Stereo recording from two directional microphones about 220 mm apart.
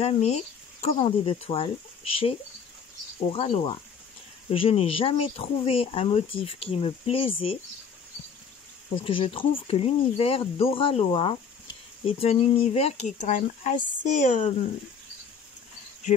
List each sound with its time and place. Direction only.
0.0 s speech: 30° left (ahead or behind)
8.9 s speech: 25° left (ahead or behind)